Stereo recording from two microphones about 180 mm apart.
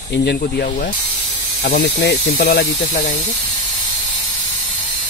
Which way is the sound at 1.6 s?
70° left (ahead or behind).